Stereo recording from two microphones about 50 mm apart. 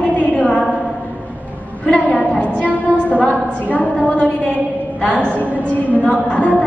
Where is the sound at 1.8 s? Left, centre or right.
Left.